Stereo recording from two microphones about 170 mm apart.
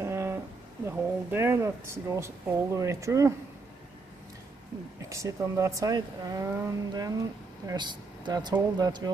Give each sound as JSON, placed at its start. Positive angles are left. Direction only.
{"t": 0.0, "sound": "a sound", "side_deg": -15}
{"t": 0.8, "sound": "speech", "side_deg": -15}
{"t": 5.1, "sound": "speech", "side_deg": -20}